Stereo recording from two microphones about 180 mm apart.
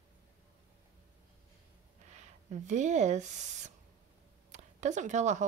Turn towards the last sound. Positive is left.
turn(degrees=-40)  # may be behind; listen again after turning